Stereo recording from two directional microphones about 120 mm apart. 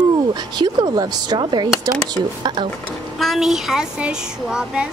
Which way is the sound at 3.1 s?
Centre (ahead or behind).